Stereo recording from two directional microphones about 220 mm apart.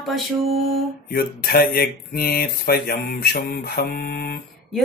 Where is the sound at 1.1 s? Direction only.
45° left (ahead or behind).